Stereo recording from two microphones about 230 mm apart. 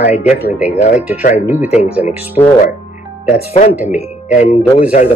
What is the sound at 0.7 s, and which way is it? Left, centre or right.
Speech, left.